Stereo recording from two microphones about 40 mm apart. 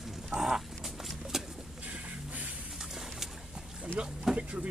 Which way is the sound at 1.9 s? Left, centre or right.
Right.